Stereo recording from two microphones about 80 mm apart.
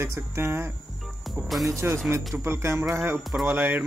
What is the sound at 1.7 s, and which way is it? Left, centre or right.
A man's voice, right.